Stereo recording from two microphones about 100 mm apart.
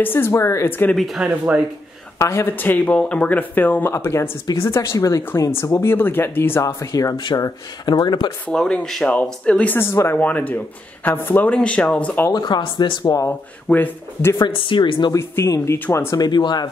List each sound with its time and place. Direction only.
0.0 s speech: 20° left (ahead or behind)
0.9 s speech: centre (ahead or behind)
2.1 s speech: 30° left (ahead or behind)
6.6 s speech: 35° left (ahead or behind)
8.5 s speech: 5° left (ahead or behind)
12.3 s speech: 45° left (ahead or behind)
13.7 s speech: 15° left (ahead or behind)
14.4 s speech: 60° left (ahead or behind)
15.1 s speech: 25° left (ahead or behind)
16.2 s speech: 45° left (ahead or behind)